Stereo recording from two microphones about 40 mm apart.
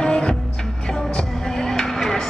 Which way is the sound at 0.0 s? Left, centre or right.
Left.